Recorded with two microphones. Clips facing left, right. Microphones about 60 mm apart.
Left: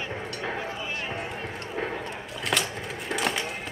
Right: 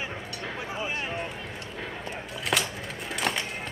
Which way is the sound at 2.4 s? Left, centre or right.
Centre.